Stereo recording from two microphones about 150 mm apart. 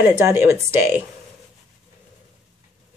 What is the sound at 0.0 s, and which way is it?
Speech, 15° right (ahead or behind).